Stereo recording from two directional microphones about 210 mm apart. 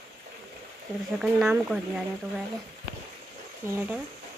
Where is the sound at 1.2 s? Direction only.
5° right (ahead or behind).